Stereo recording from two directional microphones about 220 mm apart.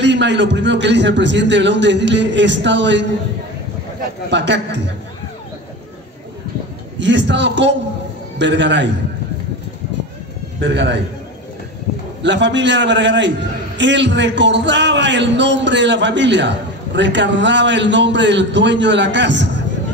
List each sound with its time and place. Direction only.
0.0 s a man's voice: 50° right (ahead or behind)
4.3 s a man's voice: 55° right (ahead or behind)
7.0 s a man's voice: 55° right (ahead or behind)
10.6 s a man's voice: 50° right (ahead or behind)
12.2 s a man's voice: 55° right (ahead or behind)